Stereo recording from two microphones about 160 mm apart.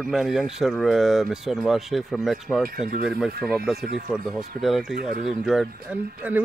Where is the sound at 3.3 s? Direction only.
75° right (ahead or behind).